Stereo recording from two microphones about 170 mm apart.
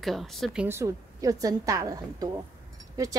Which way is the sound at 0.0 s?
Centre (ahead or behind).